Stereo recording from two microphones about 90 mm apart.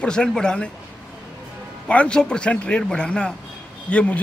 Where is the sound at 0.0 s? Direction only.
10° left (ahead or behind).